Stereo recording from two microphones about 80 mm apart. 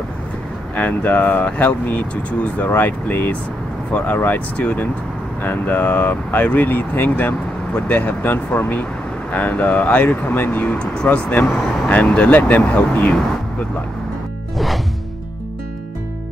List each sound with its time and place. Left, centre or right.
0.7 s speech: centre